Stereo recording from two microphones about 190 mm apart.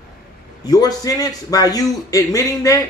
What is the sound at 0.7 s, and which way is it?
A man's voice, 20° left (ahead or behind).